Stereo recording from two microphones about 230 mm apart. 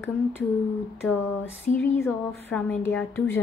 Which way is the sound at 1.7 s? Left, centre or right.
Left.